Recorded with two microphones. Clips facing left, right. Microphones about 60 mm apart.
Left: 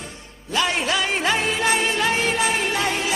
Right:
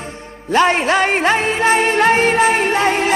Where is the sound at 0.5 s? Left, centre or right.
Right.